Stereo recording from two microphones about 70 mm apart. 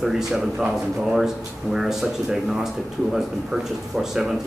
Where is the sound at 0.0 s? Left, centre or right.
Centre.